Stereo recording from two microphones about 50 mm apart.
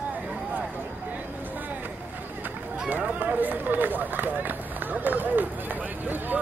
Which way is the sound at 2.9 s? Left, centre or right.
Right.